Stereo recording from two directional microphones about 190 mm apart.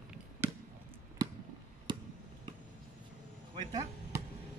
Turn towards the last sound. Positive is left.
turn(degrees=-20)  # may be behind; listen again after turning